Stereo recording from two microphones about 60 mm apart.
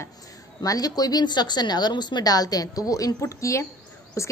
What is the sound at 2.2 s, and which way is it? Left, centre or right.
A woman's voice, left.